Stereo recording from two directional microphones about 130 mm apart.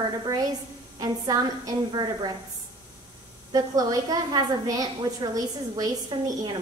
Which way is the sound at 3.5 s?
30° right (ahead or behind).